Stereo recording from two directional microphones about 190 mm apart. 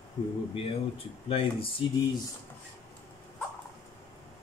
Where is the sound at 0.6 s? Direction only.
30° left (ahead or behind).